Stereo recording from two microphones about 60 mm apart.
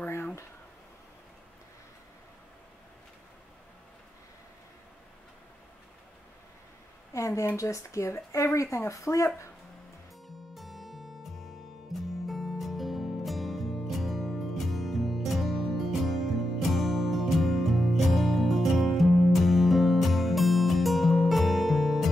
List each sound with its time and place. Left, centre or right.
7.2 s a sound: left
7.4 s speech: left
10.2 s music: centre